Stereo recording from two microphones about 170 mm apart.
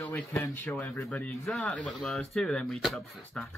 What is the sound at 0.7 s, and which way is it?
Speech, centre (ahead or behind).